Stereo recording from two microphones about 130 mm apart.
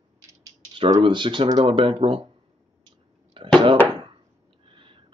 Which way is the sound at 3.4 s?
40° right (ahead or behind).